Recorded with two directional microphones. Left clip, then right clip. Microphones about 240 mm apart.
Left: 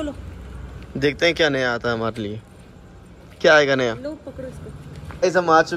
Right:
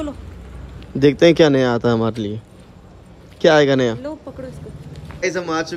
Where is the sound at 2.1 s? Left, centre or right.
Right.